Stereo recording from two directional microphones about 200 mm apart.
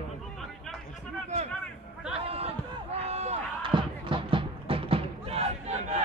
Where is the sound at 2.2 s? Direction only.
30° right (ahead or behind).